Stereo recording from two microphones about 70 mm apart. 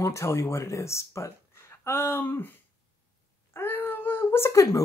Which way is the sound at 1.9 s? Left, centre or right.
Left.